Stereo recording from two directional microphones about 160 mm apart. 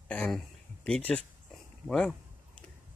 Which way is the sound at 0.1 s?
5° left (ahead or behind).